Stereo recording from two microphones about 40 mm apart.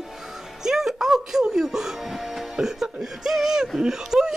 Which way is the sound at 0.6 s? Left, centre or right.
Centre.